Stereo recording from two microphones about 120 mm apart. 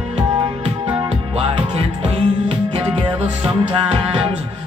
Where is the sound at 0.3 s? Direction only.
40° right (ahead or behind).